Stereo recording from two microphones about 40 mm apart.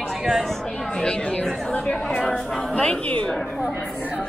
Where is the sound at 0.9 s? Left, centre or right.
Left.